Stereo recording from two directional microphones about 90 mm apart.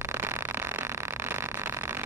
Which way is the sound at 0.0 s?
30° right (ahead or behind).